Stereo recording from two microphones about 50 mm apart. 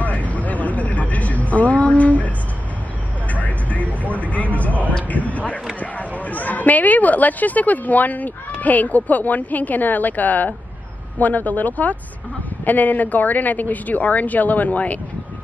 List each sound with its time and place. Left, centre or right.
0.0 s vehicle: left
3.4 s vehicle: left
5.0 s a sound: left
8.5 s a woman's voice: left